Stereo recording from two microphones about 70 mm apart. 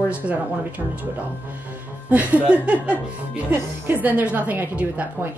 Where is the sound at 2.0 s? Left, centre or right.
Centre.